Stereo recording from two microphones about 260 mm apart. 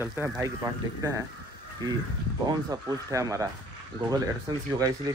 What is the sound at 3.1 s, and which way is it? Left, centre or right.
Speech, centre.